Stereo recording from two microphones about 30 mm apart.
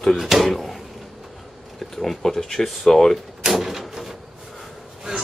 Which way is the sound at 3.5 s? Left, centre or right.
Centre.